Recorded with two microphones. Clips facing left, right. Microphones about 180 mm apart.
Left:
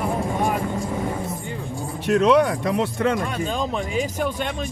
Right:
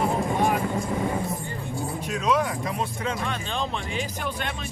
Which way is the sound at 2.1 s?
70° left (ahead or behind).